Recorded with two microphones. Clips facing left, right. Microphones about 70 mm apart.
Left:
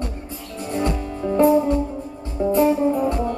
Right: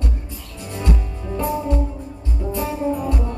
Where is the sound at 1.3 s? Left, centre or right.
Left.